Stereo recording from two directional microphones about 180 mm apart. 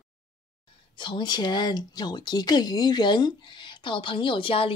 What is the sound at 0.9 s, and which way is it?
A woman's voice, 25° left (ahead or behind).